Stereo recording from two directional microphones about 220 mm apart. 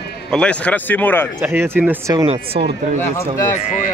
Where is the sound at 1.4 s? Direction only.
10° right (ahead or behind).